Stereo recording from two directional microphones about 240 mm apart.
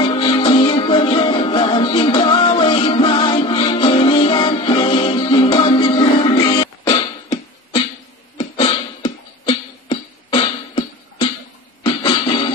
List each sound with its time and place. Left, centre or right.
0.0 s music: centre
8.4 s music: left